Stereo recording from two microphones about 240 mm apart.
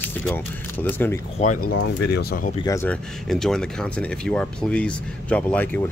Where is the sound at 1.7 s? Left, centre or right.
Left.